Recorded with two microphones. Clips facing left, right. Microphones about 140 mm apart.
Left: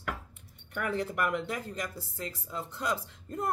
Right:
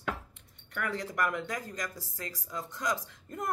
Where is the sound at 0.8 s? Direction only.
25° left (ahead or behind).